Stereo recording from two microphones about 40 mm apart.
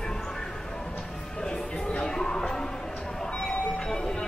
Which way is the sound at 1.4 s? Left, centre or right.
Centre.